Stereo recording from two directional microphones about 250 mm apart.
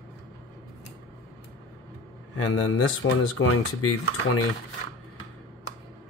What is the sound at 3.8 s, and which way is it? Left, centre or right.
Speech, left.